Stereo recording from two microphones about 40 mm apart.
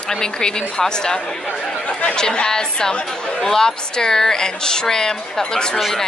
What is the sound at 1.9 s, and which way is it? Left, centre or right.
Chatter, left.